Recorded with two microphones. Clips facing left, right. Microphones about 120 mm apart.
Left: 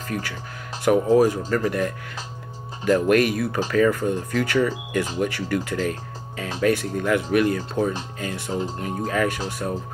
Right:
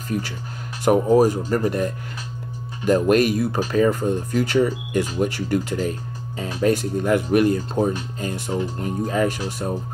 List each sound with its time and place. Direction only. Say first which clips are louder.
0.8 s speech: right 1 dB; 25° right (ahead or behind)
8.5 s speech: right 1 dB; 25° left (ahead or behind)
8.7 s speech: right 2 dB; 25° right (ahead or behind)